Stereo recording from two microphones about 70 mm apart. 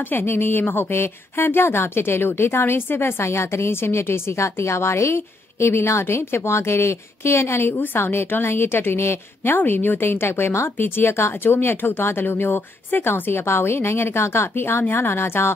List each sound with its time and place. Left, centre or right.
0.0 s speech: left